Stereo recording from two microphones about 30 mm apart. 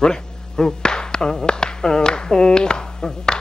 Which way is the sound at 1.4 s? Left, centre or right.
Left.